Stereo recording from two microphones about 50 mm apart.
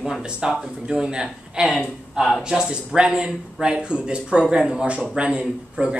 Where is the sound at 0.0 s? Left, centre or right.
Centre.